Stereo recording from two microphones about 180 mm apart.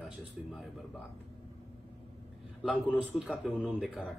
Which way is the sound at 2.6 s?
Centre (ahead or behind).